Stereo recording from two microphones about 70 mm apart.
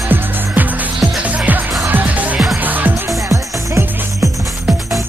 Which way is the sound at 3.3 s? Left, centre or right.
Right.